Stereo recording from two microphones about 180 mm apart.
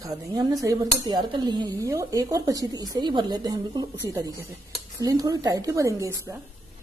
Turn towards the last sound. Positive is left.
turn(degrees=-15)  # may be behind; listen again after turning